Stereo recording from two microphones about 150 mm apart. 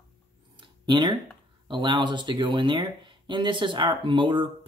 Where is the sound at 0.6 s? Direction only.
30° right (ahead or behind).